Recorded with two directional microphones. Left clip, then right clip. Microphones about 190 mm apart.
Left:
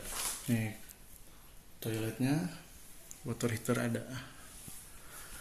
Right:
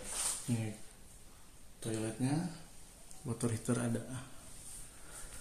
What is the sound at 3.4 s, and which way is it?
Speech, 10° right (ahead or behind).